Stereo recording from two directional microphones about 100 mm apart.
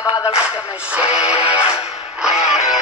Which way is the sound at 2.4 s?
90° left.